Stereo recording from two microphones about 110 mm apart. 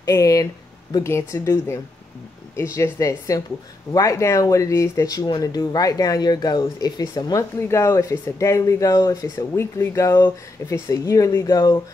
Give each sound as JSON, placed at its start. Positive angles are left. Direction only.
{"t": 0.0, "sound": "speech", "side_deg": 30}
{"t": 7.6, "sound": "speech", "side_deg": 25}